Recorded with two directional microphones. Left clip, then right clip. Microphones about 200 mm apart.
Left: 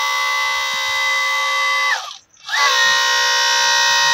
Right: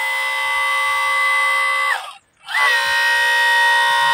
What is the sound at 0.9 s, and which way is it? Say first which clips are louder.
Siren: right 1 dB; 5° left (ahead or behind).